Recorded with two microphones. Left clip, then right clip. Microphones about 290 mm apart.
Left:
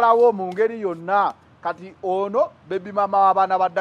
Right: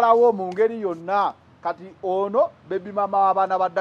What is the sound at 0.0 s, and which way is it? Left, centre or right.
A man's voice, centre.